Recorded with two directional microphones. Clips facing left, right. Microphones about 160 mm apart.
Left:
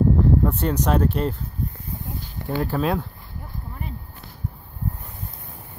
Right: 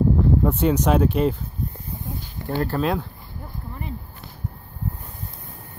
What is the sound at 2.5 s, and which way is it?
Speech, 5° left (ahead or behind).